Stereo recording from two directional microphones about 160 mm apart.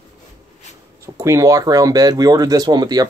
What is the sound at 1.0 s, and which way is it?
Speech, 20° right (ahead or behind).